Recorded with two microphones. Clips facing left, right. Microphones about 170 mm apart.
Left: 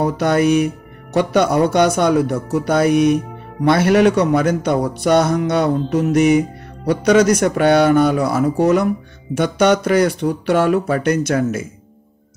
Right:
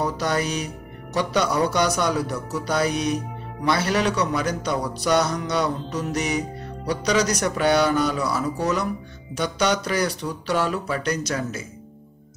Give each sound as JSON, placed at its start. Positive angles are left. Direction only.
{"t": 0.0, "sound": "speech", "side_deg": 55}